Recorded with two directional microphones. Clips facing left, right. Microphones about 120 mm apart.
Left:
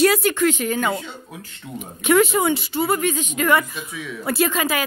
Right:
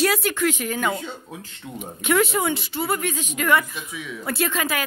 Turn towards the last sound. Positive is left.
turn(degrees=5)  # may be behind; listen again after turning